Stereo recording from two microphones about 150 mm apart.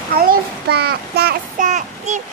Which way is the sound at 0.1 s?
85° right.